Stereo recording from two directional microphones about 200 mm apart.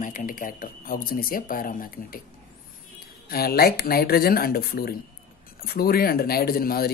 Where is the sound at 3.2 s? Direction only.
50° left (ahead or behind).